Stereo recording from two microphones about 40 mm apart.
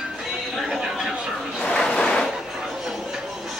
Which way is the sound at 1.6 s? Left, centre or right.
Left.